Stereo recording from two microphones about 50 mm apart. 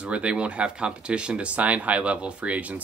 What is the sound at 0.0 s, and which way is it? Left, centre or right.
Speech, right.